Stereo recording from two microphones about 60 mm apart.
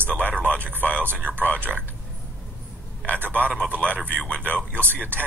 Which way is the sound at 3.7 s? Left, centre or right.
Left.